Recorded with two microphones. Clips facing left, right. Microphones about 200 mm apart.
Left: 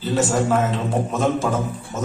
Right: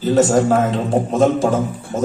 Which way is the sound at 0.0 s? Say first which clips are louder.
Right 6 dB; 40° right (ahead or behind).